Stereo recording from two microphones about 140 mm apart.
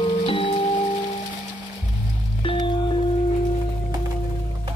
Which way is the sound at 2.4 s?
35° left (ahead or behind).